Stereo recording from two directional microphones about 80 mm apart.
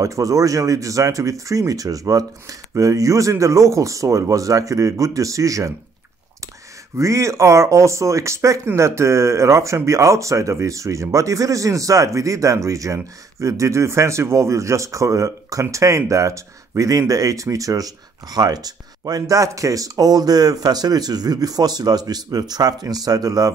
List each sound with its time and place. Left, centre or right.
0.0 s speech: right
7.0 s speech: right